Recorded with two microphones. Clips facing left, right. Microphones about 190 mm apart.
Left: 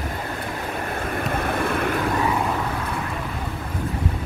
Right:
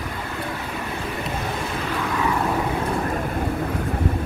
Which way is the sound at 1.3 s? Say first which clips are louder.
Left 4 dB; 55° left (ahead or behind).